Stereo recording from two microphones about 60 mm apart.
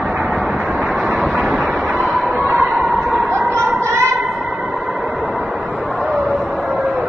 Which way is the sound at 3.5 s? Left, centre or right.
Right.